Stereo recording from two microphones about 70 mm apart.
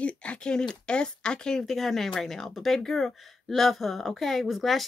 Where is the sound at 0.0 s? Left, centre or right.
Centre.